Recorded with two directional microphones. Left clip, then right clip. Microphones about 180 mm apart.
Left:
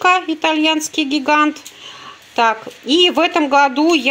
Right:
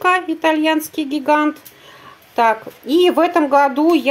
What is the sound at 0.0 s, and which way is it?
Speech, 5° right (ahead or behind).